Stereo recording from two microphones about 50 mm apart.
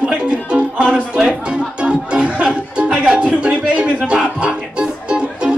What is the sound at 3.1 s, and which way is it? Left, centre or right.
Music, centre.